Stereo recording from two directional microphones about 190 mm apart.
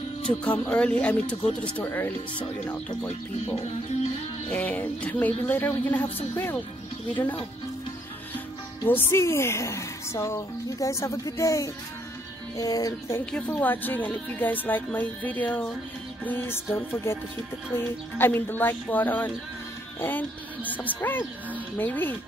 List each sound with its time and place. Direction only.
0.4 s a woman's voice: 5° left (ahead or behind)
4.5 s a woman's voice: 5° left (ahead or behind)
8.8 s a woman's voice: 10° left (ahead or behind)
12.5 s music: 20° left (ahead or behind)
13.2 s a woman's voice: 5° left (ahead or behind)